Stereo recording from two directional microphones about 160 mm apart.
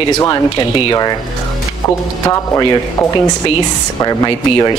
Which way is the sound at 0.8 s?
25° left (ahead or behind).